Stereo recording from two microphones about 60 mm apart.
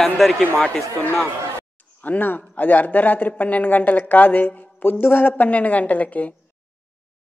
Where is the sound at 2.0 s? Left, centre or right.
Left.